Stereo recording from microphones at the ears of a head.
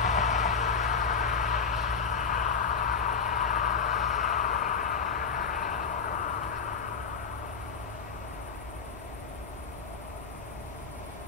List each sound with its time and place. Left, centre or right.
0.0 s vehicle: left